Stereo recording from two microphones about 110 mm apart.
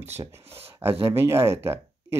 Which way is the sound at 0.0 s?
20° right (ahead or behind).